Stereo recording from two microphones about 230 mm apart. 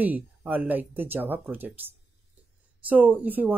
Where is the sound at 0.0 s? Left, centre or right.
Centre.